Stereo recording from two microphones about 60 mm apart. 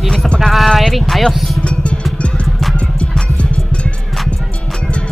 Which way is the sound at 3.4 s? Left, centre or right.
Centre.